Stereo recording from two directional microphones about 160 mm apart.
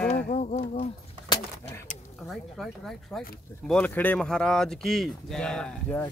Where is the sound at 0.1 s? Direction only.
45° left (ahead or behind).